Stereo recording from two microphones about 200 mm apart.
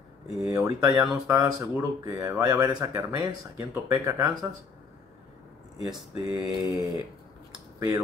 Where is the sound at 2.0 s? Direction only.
20° right (ahead or behind).